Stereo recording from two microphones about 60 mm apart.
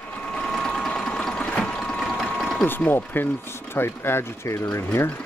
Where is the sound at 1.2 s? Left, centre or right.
Centre.